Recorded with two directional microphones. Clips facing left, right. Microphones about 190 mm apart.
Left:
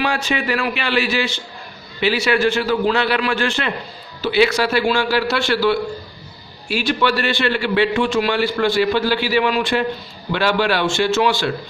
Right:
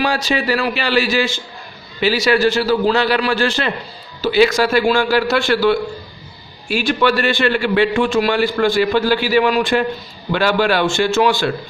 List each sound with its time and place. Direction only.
0.0 s a man's voice: 40° right (ahead or behind)